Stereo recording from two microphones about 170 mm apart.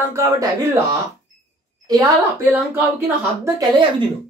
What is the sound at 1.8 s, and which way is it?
Speech, 20° right (ahead or behind).